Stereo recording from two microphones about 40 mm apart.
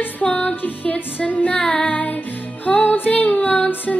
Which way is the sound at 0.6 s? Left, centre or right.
Left.